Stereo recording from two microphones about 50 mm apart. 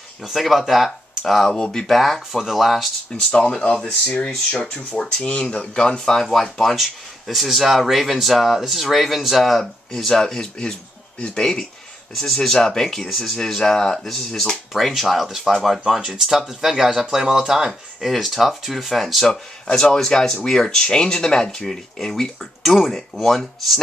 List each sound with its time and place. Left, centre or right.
0.2 s speech: centre
1.9 s speech: centre
3.2 s speech: centre
14.7 s speech: centre
19.2 s speech: centre